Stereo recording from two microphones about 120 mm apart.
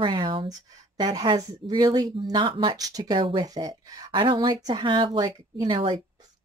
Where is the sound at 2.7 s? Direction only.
30° right (ahead or behind).